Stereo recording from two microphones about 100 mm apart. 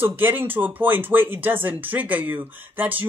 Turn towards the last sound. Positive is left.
turn(degrees=-15)  # may be behind; listen again after turning